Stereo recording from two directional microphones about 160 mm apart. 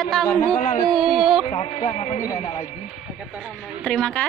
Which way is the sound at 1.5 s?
35° left (ahead or behind).